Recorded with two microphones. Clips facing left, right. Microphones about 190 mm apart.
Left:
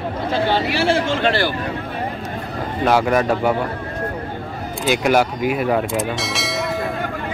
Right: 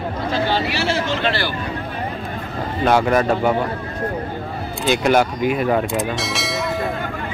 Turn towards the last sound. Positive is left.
turn(degrees=0)  # may be behind; listen again after turning